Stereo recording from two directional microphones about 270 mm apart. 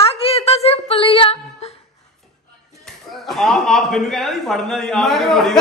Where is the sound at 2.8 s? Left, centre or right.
Centre.